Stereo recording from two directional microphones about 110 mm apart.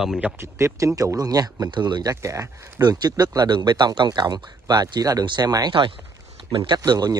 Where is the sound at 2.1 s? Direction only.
30° right (ahead or behind).